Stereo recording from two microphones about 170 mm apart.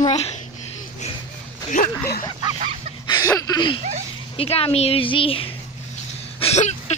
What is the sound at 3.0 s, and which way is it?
Speech, 20° left (ahead or behind).